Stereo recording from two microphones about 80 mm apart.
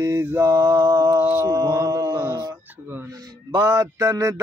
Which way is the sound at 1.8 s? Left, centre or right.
Right.